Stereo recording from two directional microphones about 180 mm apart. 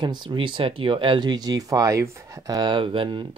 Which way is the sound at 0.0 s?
25° right (ahead or behind).